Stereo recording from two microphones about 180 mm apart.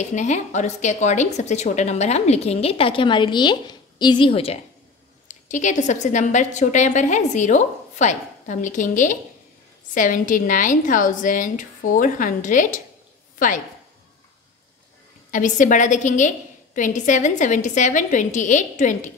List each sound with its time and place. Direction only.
0.0 s a woman's voice: 40° left (ahead or behind)
5.3 s a woman's voice: 45° left (ahead or behind)
15.3 s a woman's voice: 45° left (ahead or behind)